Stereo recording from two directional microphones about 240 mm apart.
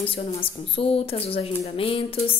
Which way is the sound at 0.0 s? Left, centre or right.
Left.